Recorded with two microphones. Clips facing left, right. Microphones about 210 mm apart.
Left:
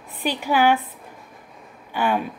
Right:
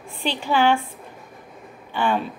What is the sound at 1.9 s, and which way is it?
Speech, 10° left (ahead or behind).